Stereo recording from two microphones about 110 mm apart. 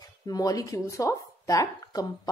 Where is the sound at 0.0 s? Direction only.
35° left (ahead or behind).